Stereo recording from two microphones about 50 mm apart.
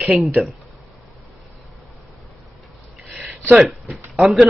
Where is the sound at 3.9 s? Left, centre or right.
Right.